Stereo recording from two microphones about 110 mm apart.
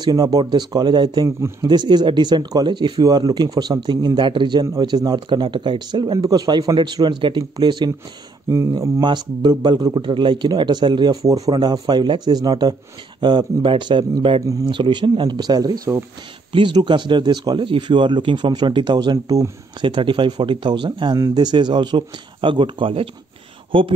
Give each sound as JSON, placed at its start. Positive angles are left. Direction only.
{"t": 0.0, "sound": "speech", "side_deg": -35}
{"t": 8.5, "sound": "speech", "side_deg": -30}
{"t": 9.0, "sound": "speech", "side_deg": -40}
{"t": 16.5, "sound": "speech", "side_deg": -45}